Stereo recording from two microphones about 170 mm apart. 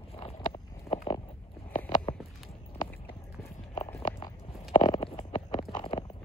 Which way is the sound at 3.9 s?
30° left (ahead or behind).